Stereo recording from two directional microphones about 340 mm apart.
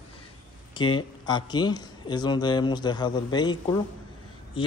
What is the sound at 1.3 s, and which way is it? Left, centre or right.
A man's voice, centre.